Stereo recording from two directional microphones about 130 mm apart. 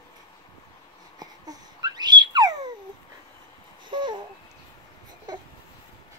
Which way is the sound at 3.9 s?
35° right (ahead or behind).